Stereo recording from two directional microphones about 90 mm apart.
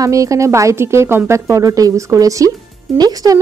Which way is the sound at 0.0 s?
35° right (ahead or behind).